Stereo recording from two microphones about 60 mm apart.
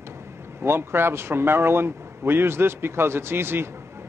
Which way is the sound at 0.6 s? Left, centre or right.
Right.